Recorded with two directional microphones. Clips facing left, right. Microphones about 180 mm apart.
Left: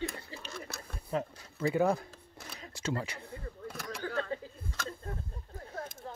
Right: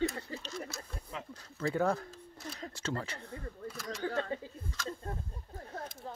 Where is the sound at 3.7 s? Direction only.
60° left (ahead or behind).